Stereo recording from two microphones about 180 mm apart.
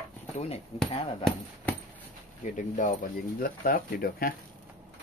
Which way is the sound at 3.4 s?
55° left (ahead or behind).